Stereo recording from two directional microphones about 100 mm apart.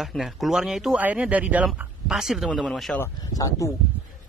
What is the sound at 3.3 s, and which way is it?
Speech, 35° left (ahead or behind).